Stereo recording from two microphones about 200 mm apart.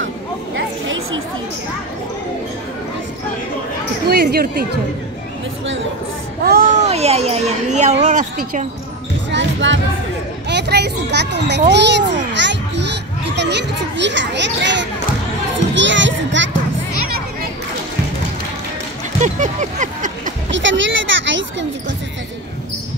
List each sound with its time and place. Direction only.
0.6 s a sound: 70° right (ahead or behind)
4.1 s speech: 50° right (ahead or behind)
6.4 s speech: 45° right (ahead or behind)
9.3 s music: 65° right (ahead or behind)
10.5 s a child's voice: 55° right (ahead or behind)
15.7 s children playing: 65° right (ahead or behind)
19.2 s a sound: 40° right (ahead or behind)
20.5 s speech: 65° right (ahead or behind)